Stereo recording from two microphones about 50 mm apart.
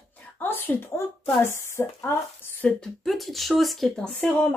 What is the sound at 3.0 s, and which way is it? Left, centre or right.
Speech, centre.